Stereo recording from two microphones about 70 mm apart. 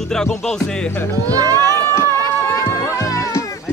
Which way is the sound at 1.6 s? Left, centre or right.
Left.